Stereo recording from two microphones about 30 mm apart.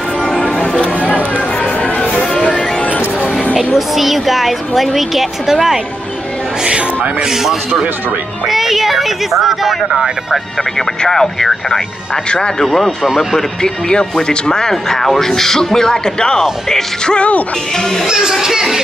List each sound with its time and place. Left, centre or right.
0.4 s music: left
3.5 s a woman's voice: centre
8.5 s a woman's voice: centre
11.1 s speech: centre
12.6 s speech: centre
13.6 s speech: left
18.0 s a woman's voice: centre